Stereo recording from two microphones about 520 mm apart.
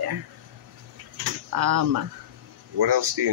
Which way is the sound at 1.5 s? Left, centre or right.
Right.